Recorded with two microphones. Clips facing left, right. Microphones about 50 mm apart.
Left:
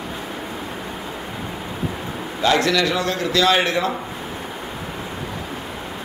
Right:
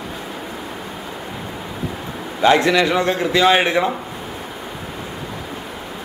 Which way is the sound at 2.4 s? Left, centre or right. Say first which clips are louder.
Right 4 dB; right.